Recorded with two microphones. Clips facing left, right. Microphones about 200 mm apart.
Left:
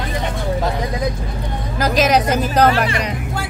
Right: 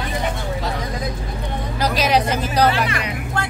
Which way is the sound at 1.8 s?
45° left (ahead or behind).